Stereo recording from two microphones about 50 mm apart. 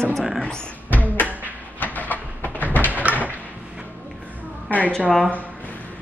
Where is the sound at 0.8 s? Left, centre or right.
Left.